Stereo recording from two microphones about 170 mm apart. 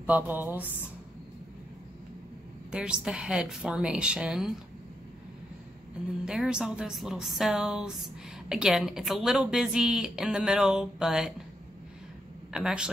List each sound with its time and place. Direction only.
0.0 s a sound: 10° right (ahead or behind)
2.7 s a woman's voice: 5° right (ahead or behind)
6.2 s a woman's voice: 5° right (ahead or behind)
12.5 s a woman's voice: 5° right (ahead or behind)